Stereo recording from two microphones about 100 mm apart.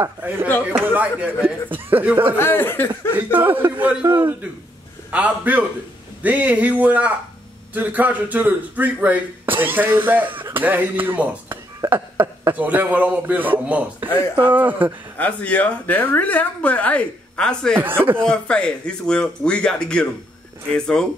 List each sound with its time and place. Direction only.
0.0 s speech: 20° right (ahead or behind)
2.3 s speech: 25° left (ahead or behind)
3.2 s speech: 20° right (ahead or behind)
15.1 s a woman's voice: 15° left (ahead or behind)
17.7 s speech: 20° right (ahead or behind)
18.2 s a woman's voice: 10° left (ahead or behind)